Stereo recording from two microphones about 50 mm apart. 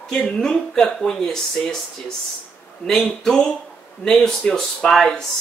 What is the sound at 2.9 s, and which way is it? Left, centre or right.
Speech, centre.